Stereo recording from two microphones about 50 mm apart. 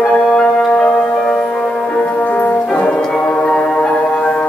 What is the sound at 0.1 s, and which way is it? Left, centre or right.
Music, centre.